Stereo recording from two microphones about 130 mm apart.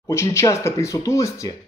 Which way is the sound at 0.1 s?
20° left (ahead or behind).